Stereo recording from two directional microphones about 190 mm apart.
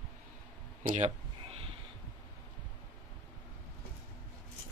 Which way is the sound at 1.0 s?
30° right (ahead or behind).